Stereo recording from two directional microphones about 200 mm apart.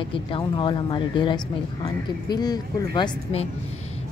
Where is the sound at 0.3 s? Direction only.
25° left (ahead or behind).